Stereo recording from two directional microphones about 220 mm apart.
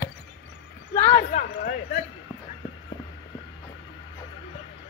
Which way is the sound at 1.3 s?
35° left (ahead or behind).